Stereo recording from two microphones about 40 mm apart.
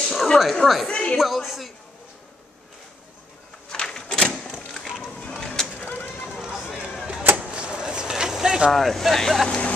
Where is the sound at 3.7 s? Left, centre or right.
Centre.